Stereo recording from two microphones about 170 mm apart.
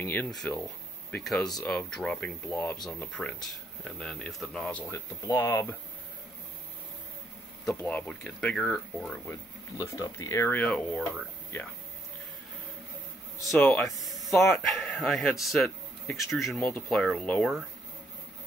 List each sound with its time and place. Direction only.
0.0 s speech: 10° left (ahead or behind)
4.9 s speech: 15° left (ahead or behind)
7.6 s speech: 5° left (ahead or behind)
9.8 s speech: 20° left (ahead or behind)
13.4 s speech: centre (ahead or behind)